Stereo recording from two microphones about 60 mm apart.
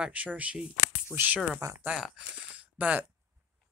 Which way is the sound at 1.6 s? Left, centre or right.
Right.